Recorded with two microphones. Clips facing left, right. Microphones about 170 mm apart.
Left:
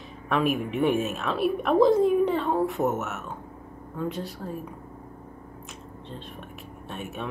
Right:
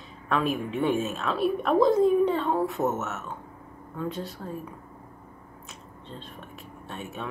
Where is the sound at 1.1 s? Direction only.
5° left (ahead or behind).